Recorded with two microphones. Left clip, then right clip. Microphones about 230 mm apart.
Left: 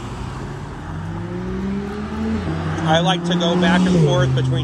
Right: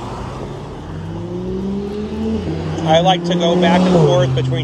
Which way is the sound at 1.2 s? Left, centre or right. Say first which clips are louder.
Right 5 dB; left.